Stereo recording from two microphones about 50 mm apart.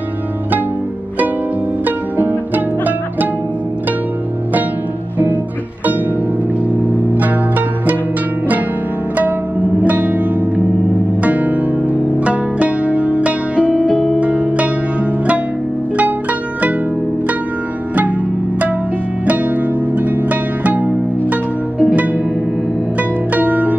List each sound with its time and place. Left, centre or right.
1.9 s music: right
7.2 s music: right
9.8 s music: right
11.2 s music: right
13.8 s music: centre
14.2 s music: right
19.2 s music: right
23.3 s music: right